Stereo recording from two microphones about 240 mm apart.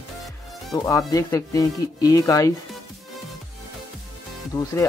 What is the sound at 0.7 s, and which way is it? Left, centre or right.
Speech, centre.